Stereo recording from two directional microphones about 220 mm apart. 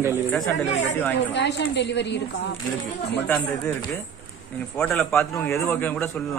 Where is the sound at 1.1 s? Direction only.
50° left (ahead or behind).